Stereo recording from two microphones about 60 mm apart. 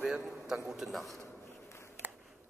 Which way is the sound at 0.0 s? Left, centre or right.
Centre.